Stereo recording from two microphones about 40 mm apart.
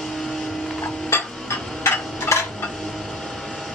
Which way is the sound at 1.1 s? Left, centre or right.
Left.